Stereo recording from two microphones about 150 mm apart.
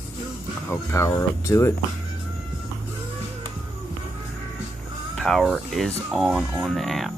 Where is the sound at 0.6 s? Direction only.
20° left (ahead or behind).